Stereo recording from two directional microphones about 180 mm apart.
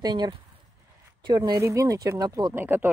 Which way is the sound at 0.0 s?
25° right (ahead or behind).